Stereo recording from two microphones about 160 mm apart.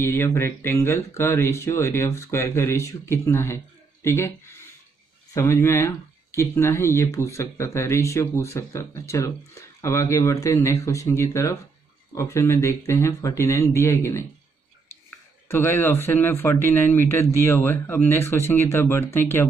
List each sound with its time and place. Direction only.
0.0 s speech: 15° left (ahead or behind)
5.3 s speech: 15° left (ahead or behind)
15.4 s speech: 15° left (ahead or behind)